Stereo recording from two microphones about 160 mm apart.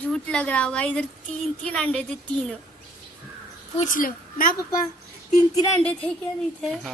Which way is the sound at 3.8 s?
60° left (ahead or behind).